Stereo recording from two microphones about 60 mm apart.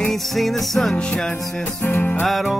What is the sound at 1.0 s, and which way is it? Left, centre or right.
Music, centre.